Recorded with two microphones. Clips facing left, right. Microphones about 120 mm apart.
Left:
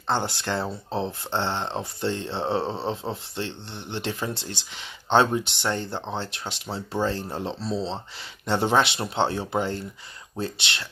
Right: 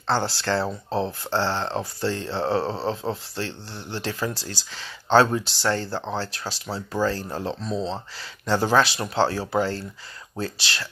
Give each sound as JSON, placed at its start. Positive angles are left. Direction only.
{"t": 0.0, "sound": "speech", "side_deg": 20}